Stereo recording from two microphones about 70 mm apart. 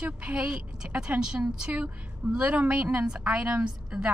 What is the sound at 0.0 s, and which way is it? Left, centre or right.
A woman's voice, centre.